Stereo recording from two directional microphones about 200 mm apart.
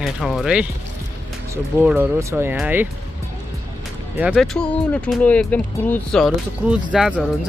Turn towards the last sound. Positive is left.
turn(degrees=-5)  # may be behind; listen again after turning